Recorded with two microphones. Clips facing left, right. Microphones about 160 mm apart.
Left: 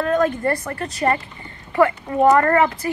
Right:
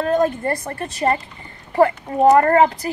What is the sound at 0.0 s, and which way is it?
Speech, 25° right (ahead or behind).